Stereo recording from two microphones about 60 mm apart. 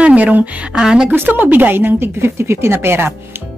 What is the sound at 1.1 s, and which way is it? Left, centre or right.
Speech, right.